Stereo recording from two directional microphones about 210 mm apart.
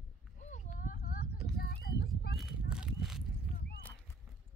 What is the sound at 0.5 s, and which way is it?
Horse, 35° left (ahead or behind).